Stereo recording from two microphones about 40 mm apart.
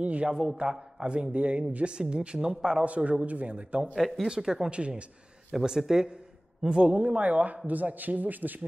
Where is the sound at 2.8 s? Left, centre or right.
Right.